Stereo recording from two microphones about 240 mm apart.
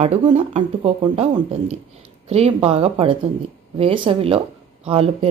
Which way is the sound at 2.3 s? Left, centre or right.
Right.